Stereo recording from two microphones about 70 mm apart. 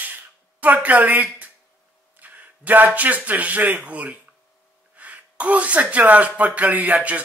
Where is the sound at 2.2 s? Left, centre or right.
Right.